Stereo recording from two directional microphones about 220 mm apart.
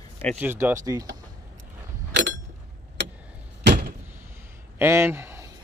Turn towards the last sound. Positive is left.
turn(degrees=-10)  # may be behind; listen again after turning